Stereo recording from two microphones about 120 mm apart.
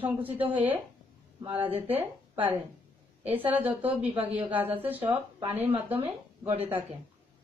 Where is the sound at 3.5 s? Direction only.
15° right (ahead or behind).